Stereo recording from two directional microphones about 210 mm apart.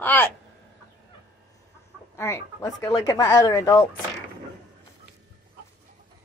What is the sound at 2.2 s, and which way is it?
Speech, 15° left (ahead or behind).